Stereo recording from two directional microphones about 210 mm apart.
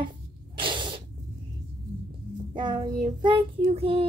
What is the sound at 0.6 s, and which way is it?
Sneeze, 25° right (ahead or behind).